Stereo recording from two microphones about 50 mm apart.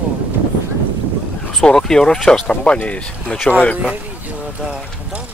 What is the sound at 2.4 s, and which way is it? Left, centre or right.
Speech, left.